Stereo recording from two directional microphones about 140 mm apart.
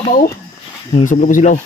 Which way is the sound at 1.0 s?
65° left (ahead or behind).